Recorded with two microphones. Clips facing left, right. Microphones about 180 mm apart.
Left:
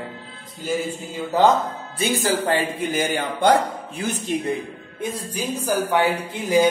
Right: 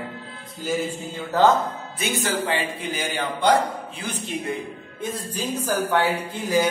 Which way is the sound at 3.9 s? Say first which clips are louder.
Left 6 dB; 45° left (ahead or behind).